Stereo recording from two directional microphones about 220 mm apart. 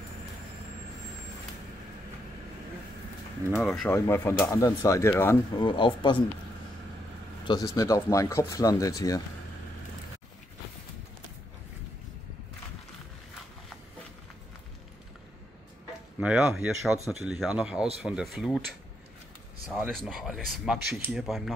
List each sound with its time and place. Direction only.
3.5 s speech: centre (ahead or behind)
5.7 s speech: 20° left (ahead or behind)
7.4 s speech: 15° left (ahead or behind)
16.2 s speech: 5° right (ahead or behind)